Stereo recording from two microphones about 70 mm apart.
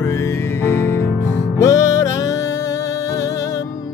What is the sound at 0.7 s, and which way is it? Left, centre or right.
Music, left.